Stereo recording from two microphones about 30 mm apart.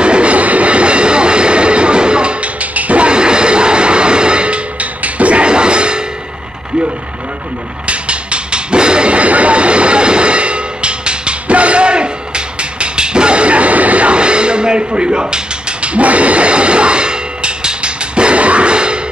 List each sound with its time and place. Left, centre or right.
0.0 s train: right
2.4 s a sound: right
3.1 s music: right
4.7 s music: right
7.8 s music: right
14.1 s mechanisms: right